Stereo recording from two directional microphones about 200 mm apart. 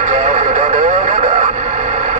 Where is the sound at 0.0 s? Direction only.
40° right (ahead or behind).